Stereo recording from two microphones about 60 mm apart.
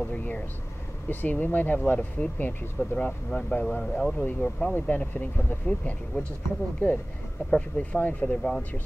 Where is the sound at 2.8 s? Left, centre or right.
Centre.